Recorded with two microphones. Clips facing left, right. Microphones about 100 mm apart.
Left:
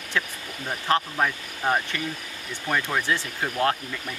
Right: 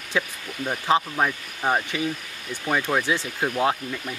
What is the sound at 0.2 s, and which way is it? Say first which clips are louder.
Speech: right 3 dB; 10° right (ahead or behind).